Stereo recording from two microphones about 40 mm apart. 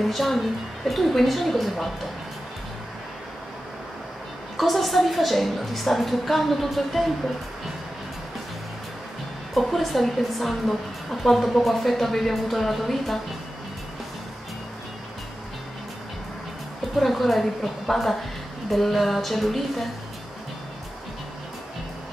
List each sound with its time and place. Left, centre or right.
0.0 s a woman's voice: centre
4.6 s a woman's voice: centre
9.5 s a woman's voice: centre
17.0 s a woman's voice: centre